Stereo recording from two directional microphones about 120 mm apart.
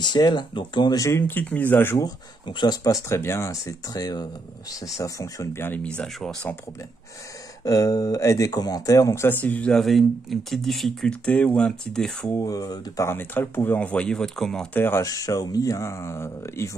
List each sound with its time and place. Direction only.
0.0 s speech: 35° left (ahead or behind); by 2.0 s 20° left (ahead or behind)
2.0 s speech: 35° left (ahead or behind); by 5.8 s 20° left (ahead or behind)
5.9 s speech: 5° left (ahead or behind)
7.6 s speech: 30° left (ahead or behind); by 12.4 s 5° left (ahead or behind)
12.4 s speech: 30° left (ahead or behind); by 14.8 s 5° left (ahead or behind)
14.8 s speech: 20° left (ahead or behind)